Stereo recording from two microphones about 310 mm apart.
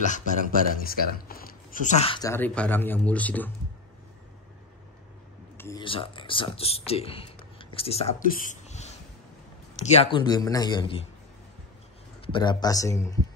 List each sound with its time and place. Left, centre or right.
0.0 s speech: left; by 3.5 s centre
5.6 s speech: centre
12.3 s speech: centre